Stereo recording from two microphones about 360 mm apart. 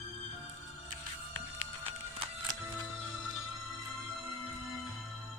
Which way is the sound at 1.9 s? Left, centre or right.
Centre.